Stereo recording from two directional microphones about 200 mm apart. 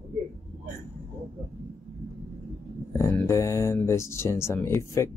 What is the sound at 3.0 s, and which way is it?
Speech, 15° left (ahead or behind).